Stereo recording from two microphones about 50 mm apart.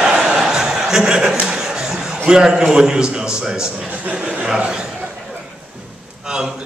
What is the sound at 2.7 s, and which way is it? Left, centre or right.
A man's voice, centre.